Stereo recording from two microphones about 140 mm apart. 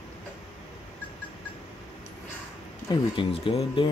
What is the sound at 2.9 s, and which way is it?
Speech, 40° left (ahead or behind).